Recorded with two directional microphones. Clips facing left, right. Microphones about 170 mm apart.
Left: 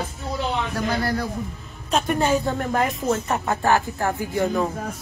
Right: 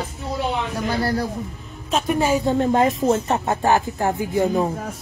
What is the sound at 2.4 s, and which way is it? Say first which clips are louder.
Speech: right 5 dB; 25° right (ahead or behind).